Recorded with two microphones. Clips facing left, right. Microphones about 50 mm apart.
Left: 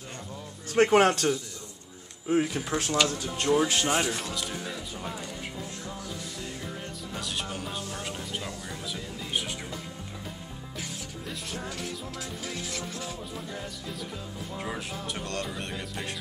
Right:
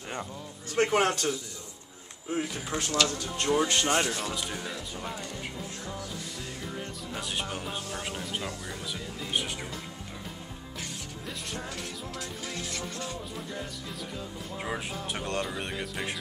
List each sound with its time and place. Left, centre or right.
0.7 s music: centre
2.2 s speech: centre
2.8 s music: centre
7.2 s speech: centre
11.2 s music: centre
14.6 s speech: centre
15.4 s music: centre